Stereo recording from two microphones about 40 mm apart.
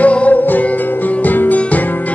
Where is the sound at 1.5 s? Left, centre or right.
Left.